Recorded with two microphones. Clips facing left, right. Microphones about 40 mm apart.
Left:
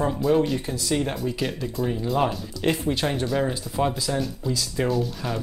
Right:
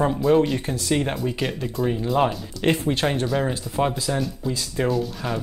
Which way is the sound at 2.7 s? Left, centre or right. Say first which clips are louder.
Right 2 dB; right.